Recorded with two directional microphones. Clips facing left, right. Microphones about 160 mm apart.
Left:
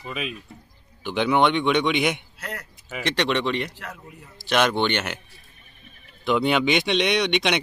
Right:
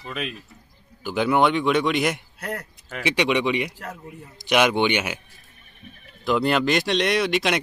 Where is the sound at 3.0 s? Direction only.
10° right (ahead or behind).